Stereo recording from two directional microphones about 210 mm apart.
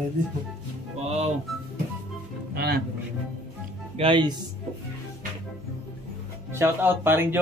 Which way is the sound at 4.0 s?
25° right (ahead or behind).